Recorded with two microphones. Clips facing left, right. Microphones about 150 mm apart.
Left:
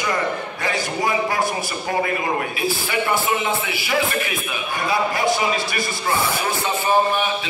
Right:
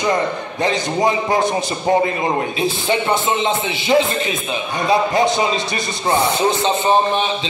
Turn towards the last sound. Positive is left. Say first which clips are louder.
# right 3 dB
turn(degrees=-25)  # may be behind; listen again after turning